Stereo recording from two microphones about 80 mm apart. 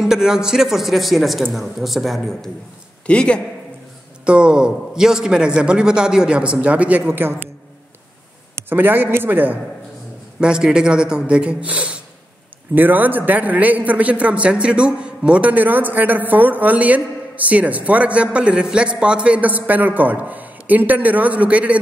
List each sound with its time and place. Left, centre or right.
0.0 s speech: centre
3.1 s a man's voice: centre
4.3 s a man's voice: centre
8.6 s a man's voice: right
10.4 s a man's voice: centre